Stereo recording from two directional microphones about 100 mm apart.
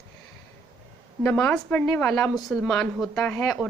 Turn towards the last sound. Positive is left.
turn(degrees=5)  # may be behind; listen again after turning